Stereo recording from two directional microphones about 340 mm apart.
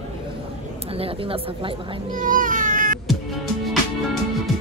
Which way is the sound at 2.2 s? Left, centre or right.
Right.